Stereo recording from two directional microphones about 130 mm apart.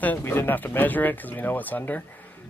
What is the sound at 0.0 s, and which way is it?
Speech, 15° left (ahead or behind).